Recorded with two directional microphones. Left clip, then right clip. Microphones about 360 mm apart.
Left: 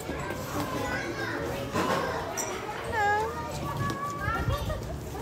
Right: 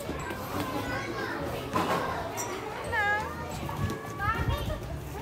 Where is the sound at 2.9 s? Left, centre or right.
Centre.